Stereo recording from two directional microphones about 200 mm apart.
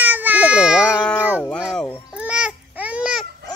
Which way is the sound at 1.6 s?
Centre (ahead or behind).